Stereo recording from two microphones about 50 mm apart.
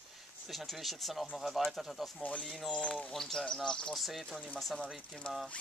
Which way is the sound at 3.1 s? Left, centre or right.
Centre.